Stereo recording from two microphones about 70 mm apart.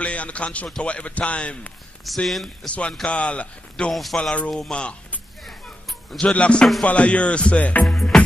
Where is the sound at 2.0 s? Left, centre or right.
Centre.